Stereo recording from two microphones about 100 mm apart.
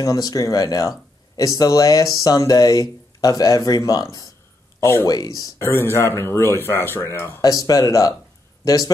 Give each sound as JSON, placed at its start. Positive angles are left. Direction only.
{"t": 0.0, "sound": "speech", "side_deg": 35}
{"t": 4.7, "sound": "speech", "side_deg": 25}
{"t": 5.0, "sound": "speech", "side_deg": 40}
{"t": 5.6, "sound": "speech", "side_deg": 25}
{"t": 7.4, "sound": "speech", "side_deg": 40}